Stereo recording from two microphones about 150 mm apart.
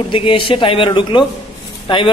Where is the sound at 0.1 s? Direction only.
35° left (ahead or behind).